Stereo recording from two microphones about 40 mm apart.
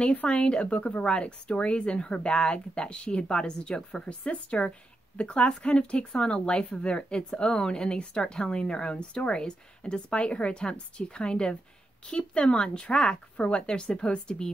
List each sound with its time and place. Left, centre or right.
0.0 s speech: left
0.3 s a woman's voice: left